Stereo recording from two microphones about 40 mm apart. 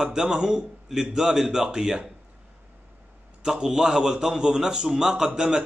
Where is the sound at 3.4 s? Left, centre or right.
Centre.